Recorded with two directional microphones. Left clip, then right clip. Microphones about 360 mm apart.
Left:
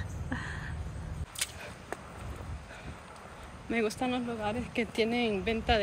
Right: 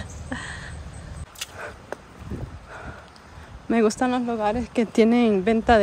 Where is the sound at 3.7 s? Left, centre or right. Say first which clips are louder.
Right 10 dB; centre.